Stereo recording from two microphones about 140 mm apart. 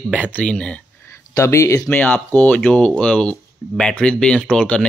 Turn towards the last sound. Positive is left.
turn(degrees=10)  # may be behind; listen again after turning